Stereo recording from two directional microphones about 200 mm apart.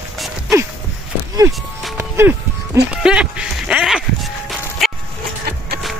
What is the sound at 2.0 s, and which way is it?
Music, 10° right (ahead or behind).